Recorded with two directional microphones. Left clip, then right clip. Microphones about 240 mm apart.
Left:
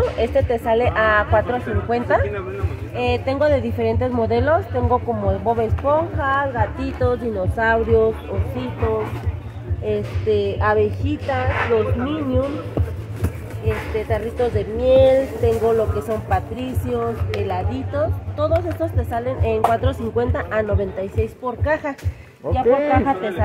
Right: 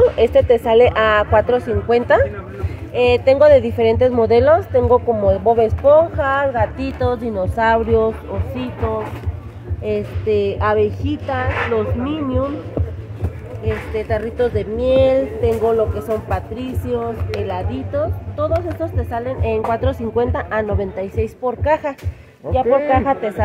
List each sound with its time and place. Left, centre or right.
0.2 s a woman's voice: right
9.8 s a woman's voice: right
13.7 s a woman's voice: right
16.0 s speech: right
19.0 s a woman's voice: right